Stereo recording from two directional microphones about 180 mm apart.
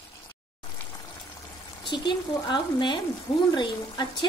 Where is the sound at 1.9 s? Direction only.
25° left (ahead or behind).